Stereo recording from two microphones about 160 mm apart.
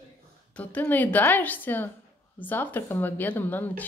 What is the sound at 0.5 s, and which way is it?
Speech, 10° left (ahead or behind).